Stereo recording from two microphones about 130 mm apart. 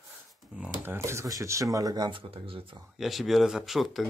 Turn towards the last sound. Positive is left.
turn(degrees=0)  # may be behind; listen again after turning